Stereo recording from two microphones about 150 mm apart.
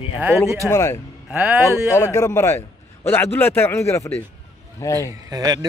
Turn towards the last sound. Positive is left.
turn(degrees=-25)  # may be behind; listen again after turning